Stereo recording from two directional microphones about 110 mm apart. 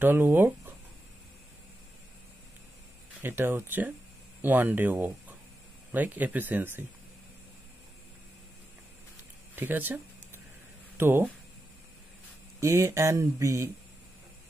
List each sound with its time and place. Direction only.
0.0 s speech: 20° right (ahead or behind)
3.2 s speech: 20° right (ahead or behind)
9.6 s a sound: 20° right (ahead or behind)
11.0 s speech: 20° right (ahead or behind)
12.5 s speech: 25° right (ahead or behind)